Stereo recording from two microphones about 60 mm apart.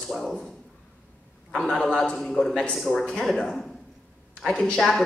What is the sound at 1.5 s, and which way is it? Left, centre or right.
A man's voice, centre.